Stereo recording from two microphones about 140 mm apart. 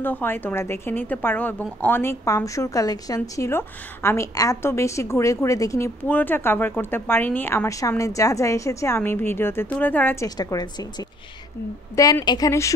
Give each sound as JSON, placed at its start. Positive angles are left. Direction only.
{"t": 0.0, "sound": "a woman's voice", "side_deg": 15}
{"t": 10.2, "sound": "a woman's voice", "side_deg": 25}